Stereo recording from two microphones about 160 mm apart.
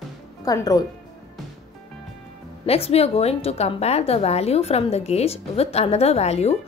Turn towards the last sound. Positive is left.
turn(degrees=40)  # may be behind; listen again after turning